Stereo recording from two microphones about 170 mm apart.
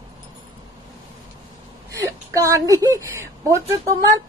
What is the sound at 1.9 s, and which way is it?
A woman's voice, 20° right (ahead or behind).